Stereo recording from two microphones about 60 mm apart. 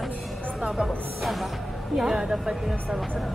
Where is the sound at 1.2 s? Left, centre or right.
Centre.